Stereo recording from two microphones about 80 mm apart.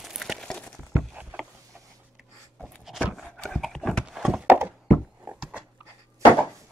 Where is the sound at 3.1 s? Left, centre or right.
Centre.